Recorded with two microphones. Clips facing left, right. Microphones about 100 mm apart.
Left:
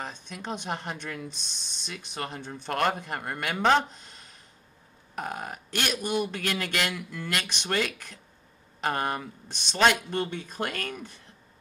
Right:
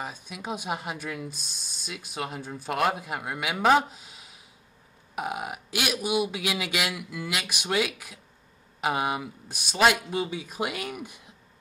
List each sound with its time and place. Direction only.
0.0 s speech: 10° right (ahead or behind)